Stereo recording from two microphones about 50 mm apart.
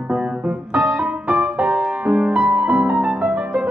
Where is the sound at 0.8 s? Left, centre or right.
Right.